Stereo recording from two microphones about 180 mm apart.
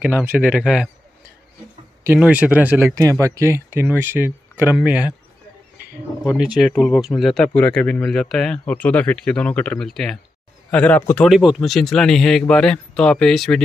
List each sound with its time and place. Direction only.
0.0 s speech: 10° right (ahead or behind)
2.1 s speech: 5° right (ahead or behind)
6.3 s speech: 5° right (ahead or behind)
11.2 s speech: centre (ahead or behind)